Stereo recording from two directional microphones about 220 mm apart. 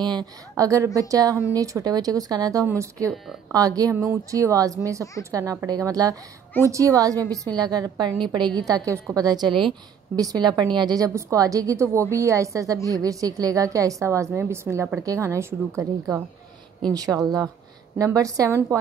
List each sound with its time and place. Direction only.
0.0 s a woman's voice: 20° right (ahead or behind)